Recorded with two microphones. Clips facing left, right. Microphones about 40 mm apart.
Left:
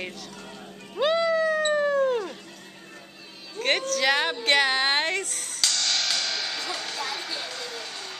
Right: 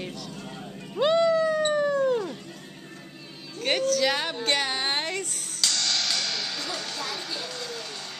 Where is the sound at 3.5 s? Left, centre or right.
Left.